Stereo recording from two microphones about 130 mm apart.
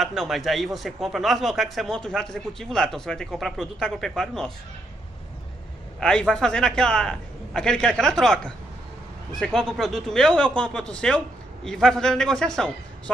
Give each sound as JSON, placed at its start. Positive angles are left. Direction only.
{"t": 0.0, "sound": "a man's voice", "side_deg": 0}
{"t": 5.9, "sound": "a man's voice", "side_deg": 5}